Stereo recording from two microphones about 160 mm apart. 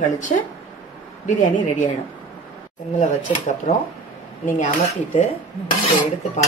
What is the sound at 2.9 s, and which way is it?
A woman's voice, 50° left (ahead or behind).